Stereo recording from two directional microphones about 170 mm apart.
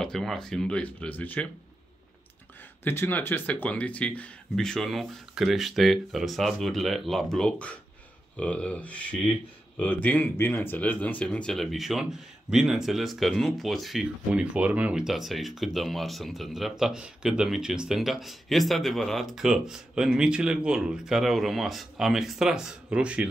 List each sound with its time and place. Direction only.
0.0 s speech: centre (ahead or behind)
2.8 s speech: 10° left (ahead or behind); by 23.2 s 5° right (ahead or behind)